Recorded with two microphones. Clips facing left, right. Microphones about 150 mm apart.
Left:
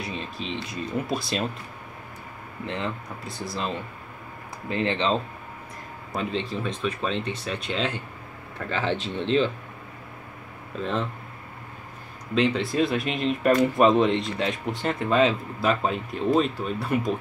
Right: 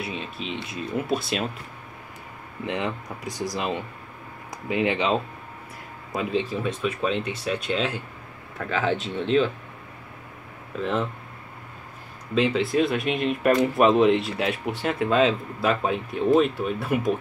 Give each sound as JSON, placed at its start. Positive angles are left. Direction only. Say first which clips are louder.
{"t": 0.0, "sound": "speech", "louder": "right 1 dB", "side_deg": -5}
{"t": 2.6, "sound": "speech", "louder": "right 3 dB", "side_deg": -15}
{"t": 12.4, "sound": "speech", "louder": "right 1 dB", "side_deg": -5}